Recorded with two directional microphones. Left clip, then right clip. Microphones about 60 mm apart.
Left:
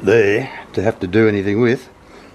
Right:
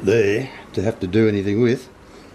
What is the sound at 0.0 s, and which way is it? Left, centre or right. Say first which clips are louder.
Speech: left 4 dB; left.